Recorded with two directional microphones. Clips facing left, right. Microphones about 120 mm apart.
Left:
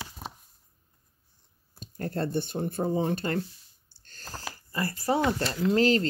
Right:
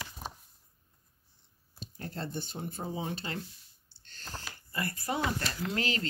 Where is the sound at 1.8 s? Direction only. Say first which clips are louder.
Left 9 dB; 50° left (ahead or behind).